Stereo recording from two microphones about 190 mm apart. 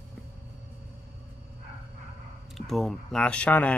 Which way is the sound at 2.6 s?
Centre (ahead or behind).